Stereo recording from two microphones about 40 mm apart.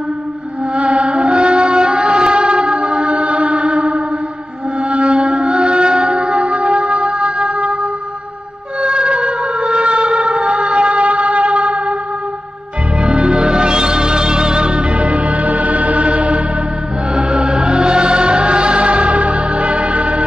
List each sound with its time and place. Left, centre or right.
0.7 s music: right
8.8 s a sound: right
13.0 s music: right
17.1 s music: right